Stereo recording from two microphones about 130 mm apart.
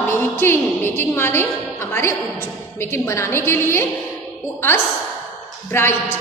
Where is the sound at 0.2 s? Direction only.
15° left (ahead or behind).